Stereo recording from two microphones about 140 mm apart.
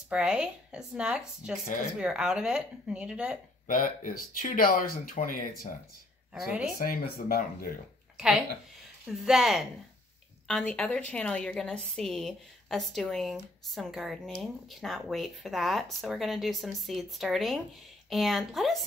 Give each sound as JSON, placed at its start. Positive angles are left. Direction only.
{"t": 0.1, "sound": "speech", "side_deg": -5}
{"t": 3.6, "sound": "speech", "side_deg": 80}
{"t": 6.3, "sound": "a woman's voice", "side_deg": -5}
{"t": 6.8, "sound": "speech", "side_deg": 90}
{"t": 9.1, "sound": "a woman's voice", "side_deg": 0}